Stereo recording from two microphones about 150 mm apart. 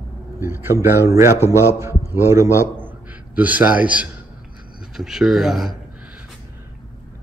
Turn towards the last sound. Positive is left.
turn(degrees=0)  # may be behind; listen again after turning